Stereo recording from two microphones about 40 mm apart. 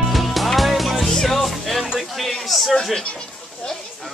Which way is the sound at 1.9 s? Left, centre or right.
Centre.